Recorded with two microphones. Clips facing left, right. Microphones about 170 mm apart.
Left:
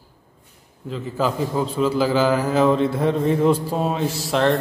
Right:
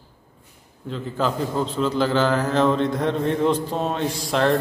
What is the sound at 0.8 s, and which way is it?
A man's voice, 5° left (ahead or behind).